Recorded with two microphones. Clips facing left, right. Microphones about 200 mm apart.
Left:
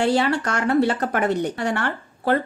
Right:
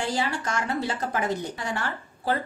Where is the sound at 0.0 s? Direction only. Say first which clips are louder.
Left 8 dB; 65° left (ahead or behind).